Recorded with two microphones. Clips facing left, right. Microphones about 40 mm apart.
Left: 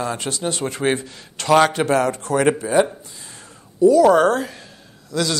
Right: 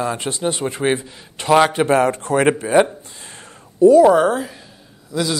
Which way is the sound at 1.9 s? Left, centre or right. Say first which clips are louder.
Right 3 dB; right.